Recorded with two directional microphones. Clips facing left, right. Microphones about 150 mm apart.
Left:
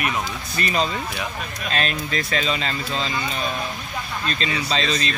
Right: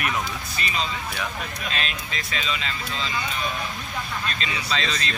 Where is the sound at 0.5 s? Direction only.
45° left (ahead or behind).